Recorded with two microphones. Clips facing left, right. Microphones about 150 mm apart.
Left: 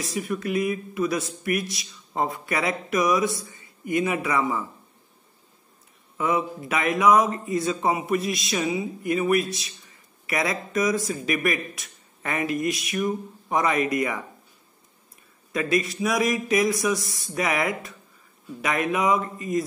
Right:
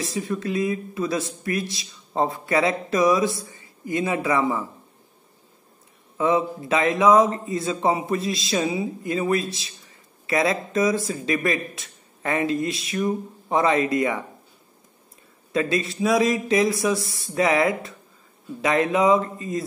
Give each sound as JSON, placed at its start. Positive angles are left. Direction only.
{"t": 0.0, "sound": "a man's voice", "side_deg": -25}
{"t": 3.5, "sound": "a sound", "side_deg": 25}
{"t": 3.9, "sound": "a man's voice", "side_deg": -25}
{"t": 6.1, "sound": "a man's voice", "side_deg": -25}
{"t": 15.5, "sound": "a man's voice", "side_deg": -25}